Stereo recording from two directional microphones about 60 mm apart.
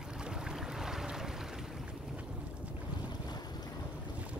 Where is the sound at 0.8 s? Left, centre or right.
Centre.